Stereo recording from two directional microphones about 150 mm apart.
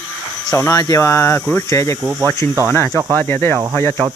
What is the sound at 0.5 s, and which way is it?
Speech, 20° left (ahead or behind).